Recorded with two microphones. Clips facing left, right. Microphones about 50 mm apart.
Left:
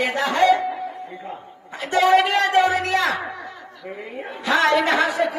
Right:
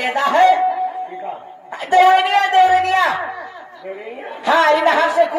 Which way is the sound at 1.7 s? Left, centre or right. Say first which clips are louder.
Right 5 dB; right.